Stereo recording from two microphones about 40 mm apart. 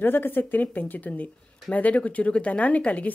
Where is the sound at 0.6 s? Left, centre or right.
Left.